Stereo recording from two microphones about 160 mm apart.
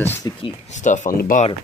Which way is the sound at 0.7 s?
50° left (ahead or behind).